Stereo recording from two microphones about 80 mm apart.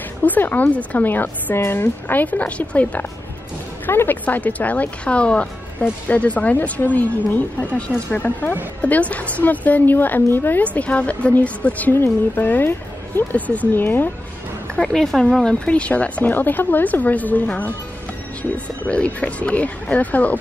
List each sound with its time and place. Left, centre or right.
0.2 s a woman's voice: left
14.8 s a woman's voice: centre